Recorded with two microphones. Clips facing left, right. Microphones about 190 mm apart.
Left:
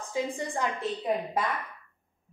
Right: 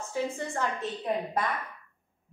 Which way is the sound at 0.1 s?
15° left (ahead or behind).